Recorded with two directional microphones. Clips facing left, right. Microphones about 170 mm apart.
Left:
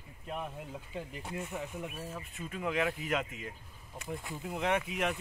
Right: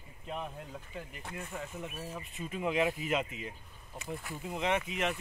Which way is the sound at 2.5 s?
20° right (ahead or behind).